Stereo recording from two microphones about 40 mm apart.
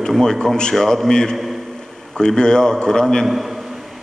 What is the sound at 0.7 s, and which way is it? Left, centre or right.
A man's voice, centre.